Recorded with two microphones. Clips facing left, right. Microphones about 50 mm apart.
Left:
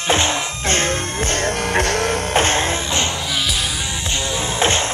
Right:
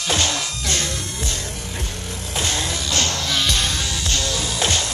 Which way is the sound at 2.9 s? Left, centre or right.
Left.